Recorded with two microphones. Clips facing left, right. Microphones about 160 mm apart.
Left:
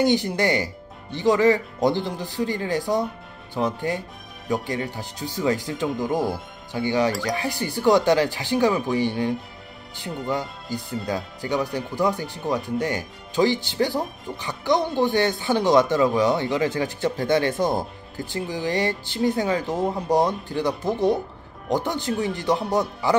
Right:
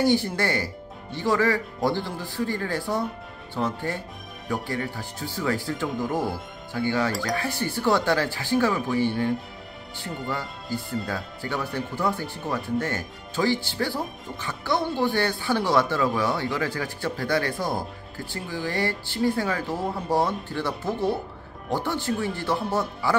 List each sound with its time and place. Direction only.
0.0 s speech: 20° left (ahead or behind)